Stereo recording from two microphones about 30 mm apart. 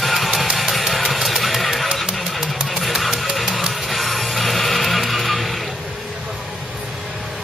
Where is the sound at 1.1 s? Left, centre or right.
Centre.